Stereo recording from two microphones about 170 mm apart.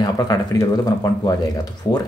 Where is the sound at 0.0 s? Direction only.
20° left (ahead or behind).